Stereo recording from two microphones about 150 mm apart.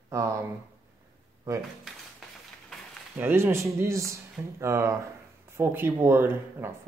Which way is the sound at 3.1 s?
15° right (ahead or behind).